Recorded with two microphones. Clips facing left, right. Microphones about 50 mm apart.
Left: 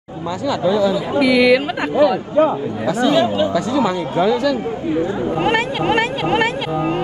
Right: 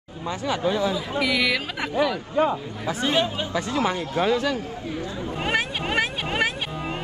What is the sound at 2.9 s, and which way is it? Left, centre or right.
Speech, right.